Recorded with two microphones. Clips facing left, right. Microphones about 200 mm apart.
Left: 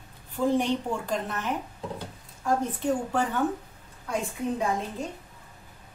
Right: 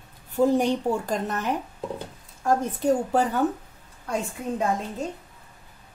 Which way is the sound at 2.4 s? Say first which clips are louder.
Right 3 dB; 40° right (ahead or behind).